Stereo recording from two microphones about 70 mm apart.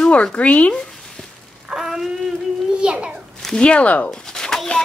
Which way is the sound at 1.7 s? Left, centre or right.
Centre.